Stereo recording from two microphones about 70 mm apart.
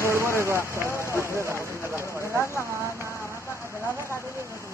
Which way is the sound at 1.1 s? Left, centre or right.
Right.